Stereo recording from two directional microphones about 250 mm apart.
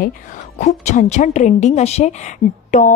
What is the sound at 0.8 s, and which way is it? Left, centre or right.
A woman's voice, left.